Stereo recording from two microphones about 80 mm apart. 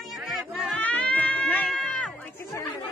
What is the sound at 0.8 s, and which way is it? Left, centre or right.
Cat, centre.